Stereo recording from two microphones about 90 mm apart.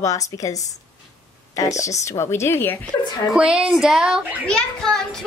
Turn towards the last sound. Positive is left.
turn(degrees=5)  # may be behind; listen again after turning